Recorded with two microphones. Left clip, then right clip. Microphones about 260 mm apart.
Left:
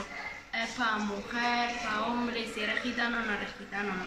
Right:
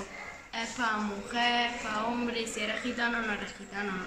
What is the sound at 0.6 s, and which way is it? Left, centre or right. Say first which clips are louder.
A woman's voice: even; centre.